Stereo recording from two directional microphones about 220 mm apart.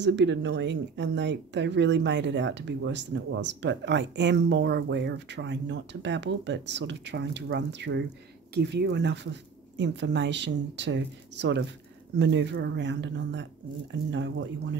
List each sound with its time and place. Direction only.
0.0 s speech: 55° right (ahead or behind)